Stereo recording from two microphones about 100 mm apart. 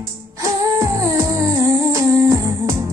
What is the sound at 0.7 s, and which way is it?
Music, 35° right (ahead or behind).